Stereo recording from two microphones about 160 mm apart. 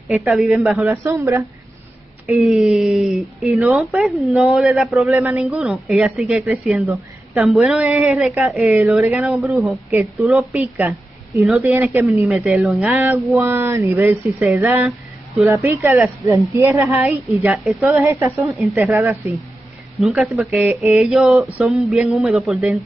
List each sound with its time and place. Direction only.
0.1 s speech: 5° right (ahead or behind)
0.8 s speech: 20° right (ahead or behind)
2.3 s speech: centre (ahead or behind)
11.7 s speech: 15° right (ahead or behind)
17.6 s speech: centre (ahead or behind)
17.9 s speech: 15° right (ahead or behind)
20.0 s speech: 5° right (ahead or behind)